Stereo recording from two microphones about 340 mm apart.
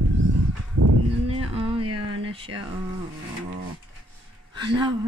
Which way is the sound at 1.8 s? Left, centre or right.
Right.